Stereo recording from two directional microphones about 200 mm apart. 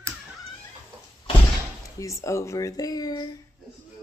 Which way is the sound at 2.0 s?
15° left (ahead or behind).